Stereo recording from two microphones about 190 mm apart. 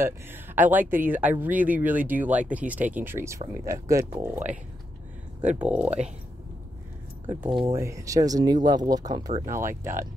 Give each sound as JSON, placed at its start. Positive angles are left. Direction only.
{"t": 0.0, "sound": "speech", "side_deg": -10}
{"t": 5.6, "sound": "speech", "side_deg": -5}
{"t": 7.2, "sound": "speech", "side_deg": -10}